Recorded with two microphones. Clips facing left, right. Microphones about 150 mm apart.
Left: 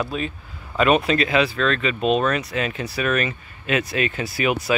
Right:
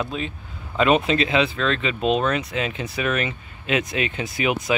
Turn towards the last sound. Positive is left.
turn(degrees=-20)  # may be behind; listen again after turning